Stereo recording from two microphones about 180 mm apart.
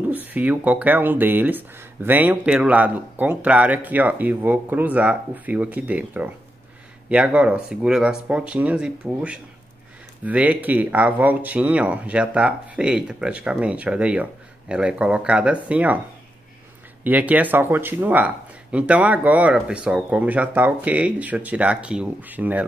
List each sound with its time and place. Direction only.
0.1 s speech: 10° right (ahead or behind)
17.0 s speech: 10° right (ahead or behind)